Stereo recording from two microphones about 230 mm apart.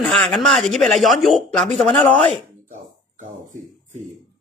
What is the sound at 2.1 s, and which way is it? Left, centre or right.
Speech, left.